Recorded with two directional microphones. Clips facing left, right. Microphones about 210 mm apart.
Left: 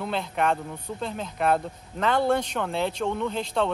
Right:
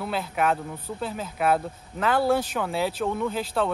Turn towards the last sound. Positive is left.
turn(degrees=-5)  # may be behind; listen again after turning